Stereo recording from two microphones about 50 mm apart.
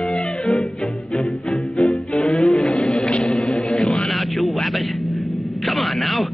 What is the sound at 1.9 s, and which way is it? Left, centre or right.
Music, left.